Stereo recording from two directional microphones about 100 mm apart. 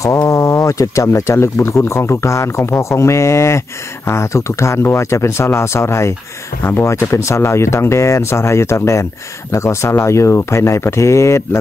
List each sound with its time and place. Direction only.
0.0 s speech: 30° left (ahead or behind)